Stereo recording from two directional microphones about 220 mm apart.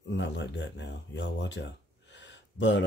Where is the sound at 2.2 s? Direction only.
55° left (ahead or behind).